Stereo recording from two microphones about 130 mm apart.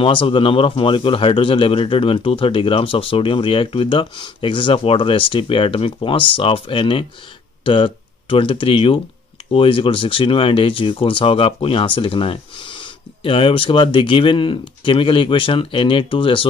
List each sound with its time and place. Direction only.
0.0 s speech: 40° left (ahead or behind)